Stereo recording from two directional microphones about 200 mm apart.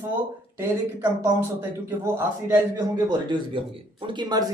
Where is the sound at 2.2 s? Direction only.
10° right (ahead or behind).